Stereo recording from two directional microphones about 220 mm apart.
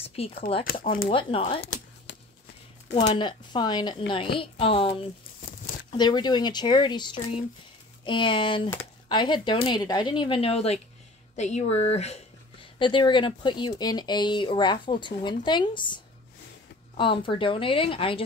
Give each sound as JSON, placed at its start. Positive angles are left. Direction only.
{"t": 0.0, "sound": "a sound", "side_deg": 25}
{"t": 1.0, "sound": "speech", "side_deg": 25}
{"t": 2.9, "sound": "speech", "side_deg": 20}